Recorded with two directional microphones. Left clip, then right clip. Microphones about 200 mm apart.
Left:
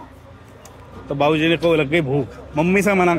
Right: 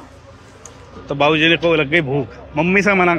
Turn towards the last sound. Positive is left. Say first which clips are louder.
# right 2 dB
turn(degrees=15)  # may be behind; listen again after turning